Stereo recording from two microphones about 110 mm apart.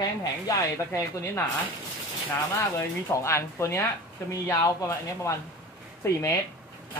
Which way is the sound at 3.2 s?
25° left (ahead or behind).